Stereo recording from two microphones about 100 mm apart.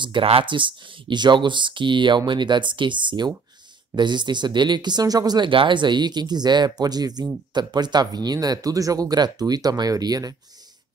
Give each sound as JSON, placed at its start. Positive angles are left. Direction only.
{"t": 0.0, "sound": "speech", "side_deg": -60}
{"t": 5.5, "sound": "speech", "side_deg": -55}